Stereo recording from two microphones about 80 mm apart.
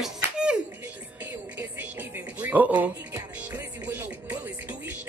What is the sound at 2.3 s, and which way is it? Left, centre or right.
Speech, right.